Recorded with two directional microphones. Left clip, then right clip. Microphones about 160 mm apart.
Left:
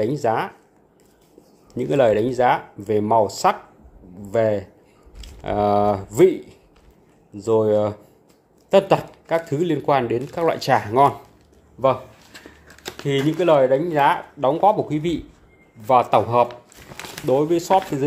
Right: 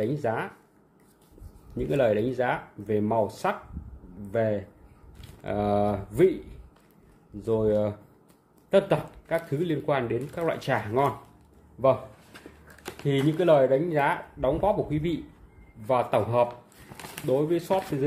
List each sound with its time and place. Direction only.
0.0 s speech: 35° left (ahead or behind)
1.8 s speech: 30° left (ahead or behind)
11.8 s a sound: 25° left (ahead or behind)
12.9 s speech: 20° left (ahead or behind)